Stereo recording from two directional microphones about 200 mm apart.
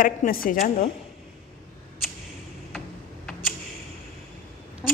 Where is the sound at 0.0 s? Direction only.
45° left (ahead or behind).